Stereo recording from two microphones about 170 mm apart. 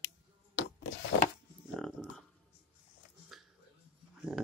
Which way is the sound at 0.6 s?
90° left.